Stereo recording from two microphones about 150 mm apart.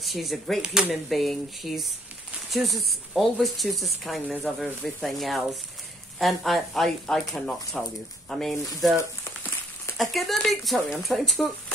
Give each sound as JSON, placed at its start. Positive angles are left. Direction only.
{"t": 0.0, "sound": "speech", "side_deg": 0}
{"t": 8.9, "sound": "a sound", "side_deg": 20}
{"t": 10.1, "sound": "speech", "side_deg": 0}